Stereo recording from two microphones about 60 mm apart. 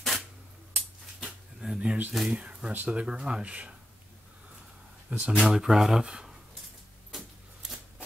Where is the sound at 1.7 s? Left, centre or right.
Right.